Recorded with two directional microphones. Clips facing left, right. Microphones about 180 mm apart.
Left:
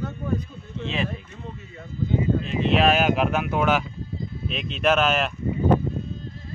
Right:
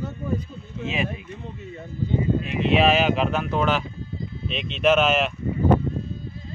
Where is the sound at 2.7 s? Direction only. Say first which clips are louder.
Right 1 dB; centre (ahead or behind).